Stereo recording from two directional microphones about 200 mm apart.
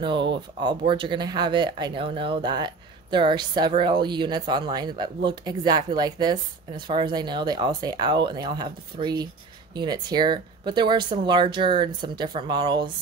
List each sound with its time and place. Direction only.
0.0 s speech: 25° right (ahead or behind)